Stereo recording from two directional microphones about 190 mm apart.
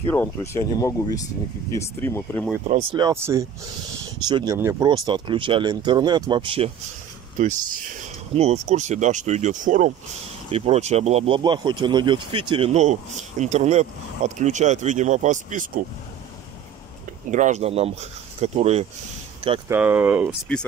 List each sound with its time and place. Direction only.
0.0 s speech: 15° left (ahead or behind)
2.9 s speech: 20° right (ahead or behind)
4.8 s speech: 25° right (ahead or behind)
7.3 s speech: 40° right (ahead or behind)
17.3 s speech: 40° right (ahead or behind)
19.7 s speech: 10° right (ahead or behind)